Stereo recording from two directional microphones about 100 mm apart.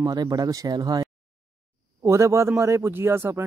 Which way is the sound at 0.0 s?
40° right (ahead or behind).